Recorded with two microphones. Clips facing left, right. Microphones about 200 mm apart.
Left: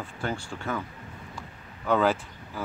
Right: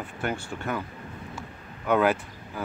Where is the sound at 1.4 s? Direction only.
20° right (ahead or behind).